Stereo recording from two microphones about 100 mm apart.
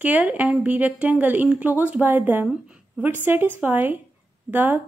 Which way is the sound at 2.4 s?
10° right (ahead or behind).